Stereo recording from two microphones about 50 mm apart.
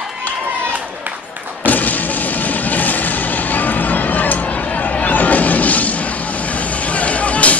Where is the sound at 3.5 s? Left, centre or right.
Left.